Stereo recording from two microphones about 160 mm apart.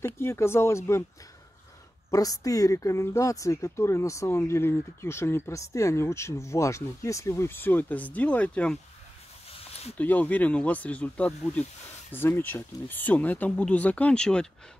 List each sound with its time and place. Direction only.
0.0 s speech: 15° left (ahead or behind)
2.0 s speech: 20° left (ahead or behind)
9.9 s speech: 10° left (ahead or behind)